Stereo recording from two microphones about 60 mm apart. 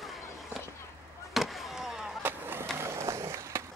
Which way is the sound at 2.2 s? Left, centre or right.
Right.